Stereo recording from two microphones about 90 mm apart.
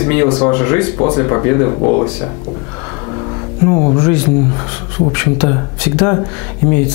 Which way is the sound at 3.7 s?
15° left (ahead or behind).